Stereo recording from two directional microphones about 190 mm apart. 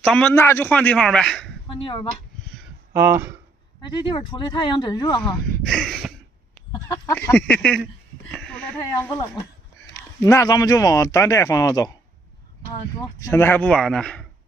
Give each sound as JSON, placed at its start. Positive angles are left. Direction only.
{"t": 0.0, "sound": "a woman's voice", "side_deg": 5}
{"t": 1.7, "sound": "speech", "side_deg": 25}
{"t": 2.9, "sound": "speech", "side_deg": -10}
{"t": 4.1, "sound": "speech", "side_deg": 25}
{"t": 5.2, "sound": "a sound", "side_deg": 0}
{"t": 7.2, "sound": "speech", "side_deg": 10}
{"t": 8.3, "sound": "a sound", "side_deg": 5}
{"t": 10.2, "sound": "speech", "side_deg": 15}
{"t": 13.2, "sound": "a woman's voice", "side_deg": 10}